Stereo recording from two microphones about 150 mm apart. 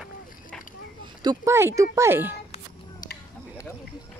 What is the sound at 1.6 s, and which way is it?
Speech, 20° right (ahead or behind).